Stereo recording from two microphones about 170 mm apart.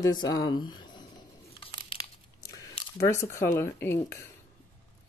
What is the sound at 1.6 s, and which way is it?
Crumpling, 30° left (ahead or behind).